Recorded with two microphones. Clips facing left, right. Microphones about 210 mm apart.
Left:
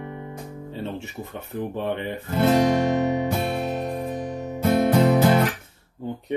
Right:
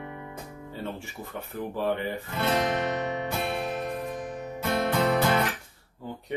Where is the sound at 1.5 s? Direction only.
20° left (ahead or behind).